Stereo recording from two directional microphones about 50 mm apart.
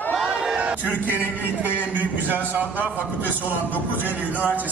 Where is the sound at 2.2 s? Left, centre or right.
Right.